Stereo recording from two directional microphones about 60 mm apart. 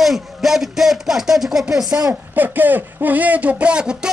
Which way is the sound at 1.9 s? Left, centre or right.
Right.